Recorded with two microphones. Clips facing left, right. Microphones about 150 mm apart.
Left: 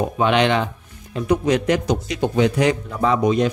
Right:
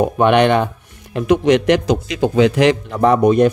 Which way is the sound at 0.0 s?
55° right (ahead or behind).